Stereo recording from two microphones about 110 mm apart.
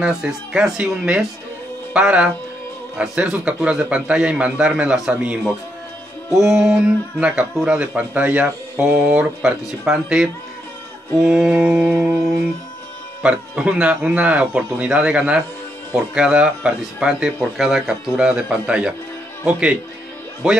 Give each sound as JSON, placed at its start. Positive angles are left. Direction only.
{"t": 0.0, "sound": "speech", "side_deg": -5}
{"t": 11.2, "sound": "speech", "side_deg": -5}
{"t": 20.4, "sound": "speech", "side_deg": -5}